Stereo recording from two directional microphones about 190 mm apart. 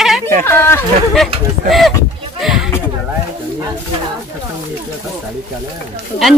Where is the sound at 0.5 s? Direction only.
10° left (ahead or behind).